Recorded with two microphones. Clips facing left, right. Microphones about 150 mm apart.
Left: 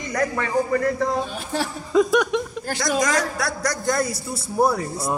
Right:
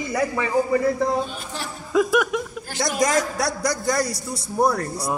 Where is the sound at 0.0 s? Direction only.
5° right (ahead or behind).